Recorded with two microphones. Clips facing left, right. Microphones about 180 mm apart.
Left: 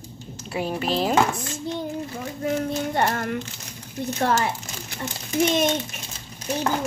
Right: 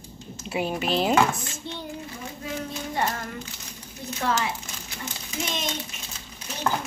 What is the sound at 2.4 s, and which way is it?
Speech, 55° left (ahead or behind).